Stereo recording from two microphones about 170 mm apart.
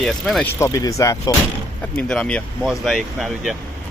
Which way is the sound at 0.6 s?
20° left (ahead or behind).